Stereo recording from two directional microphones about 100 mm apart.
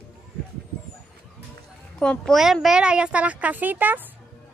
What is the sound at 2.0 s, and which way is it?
Speech, 10° left (ahead or behind).